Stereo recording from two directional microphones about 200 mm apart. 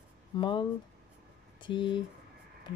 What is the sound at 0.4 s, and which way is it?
Mantra, 25° left (ahead or behind).